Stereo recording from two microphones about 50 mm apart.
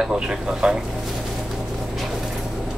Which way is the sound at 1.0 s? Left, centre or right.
Centre.